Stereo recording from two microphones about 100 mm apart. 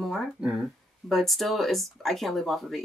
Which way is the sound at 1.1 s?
Centre (ahead or behind).